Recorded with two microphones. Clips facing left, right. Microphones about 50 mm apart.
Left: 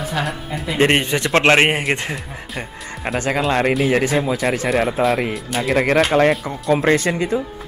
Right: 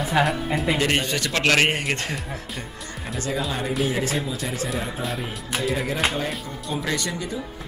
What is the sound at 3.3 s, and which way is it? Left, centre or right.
Speech, left.